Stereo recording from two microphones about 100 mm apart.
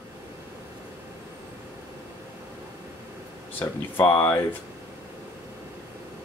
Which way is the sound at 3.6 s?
20° left (ahead or behind).